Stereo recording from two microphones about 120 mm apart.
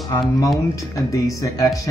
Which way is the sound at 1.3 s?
30° left (ahead or behind).